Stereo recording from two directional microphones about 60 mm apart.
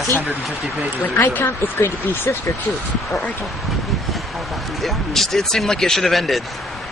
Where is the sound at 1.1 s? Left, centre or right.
Left.